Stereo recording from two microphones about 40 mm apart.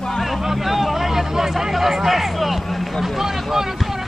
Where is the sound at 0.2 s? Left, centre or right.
Centre.